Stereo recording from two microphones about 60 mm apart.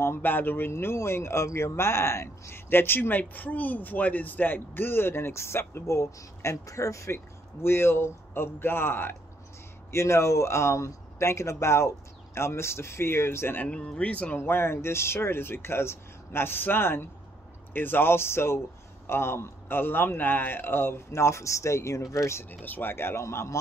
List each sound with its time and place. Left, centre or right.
0.0 s speech: left
7.6 s speech: left
9.8 s speech: left
13.6 s speech: centre
14.3 s speech: left
22.4 s speech: left